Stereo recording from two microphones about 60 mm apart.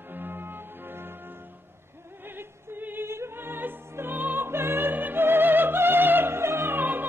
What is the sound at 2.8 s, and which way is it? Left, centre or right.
Music, right.